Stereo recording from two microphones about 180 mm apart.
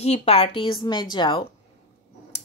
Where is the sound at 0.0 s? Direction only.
35° left (ahead or behind).